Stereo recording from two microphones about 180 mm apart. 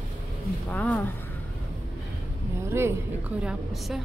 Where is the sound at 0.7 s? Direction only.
10° left (ahead or behind).